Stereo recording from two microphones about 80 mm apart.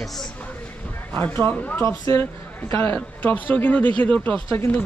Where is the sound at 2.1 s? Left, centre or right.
Left.